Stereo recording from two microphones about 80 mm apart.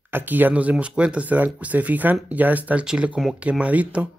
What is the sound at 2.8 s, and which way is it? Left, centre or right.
Speech, centre.